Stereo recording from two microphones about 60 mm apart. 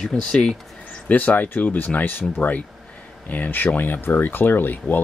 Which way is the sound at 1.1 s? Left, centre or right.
Left.